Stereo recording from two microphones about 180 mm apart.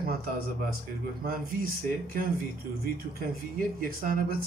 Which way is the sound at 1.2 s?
55° right (ahead or behind).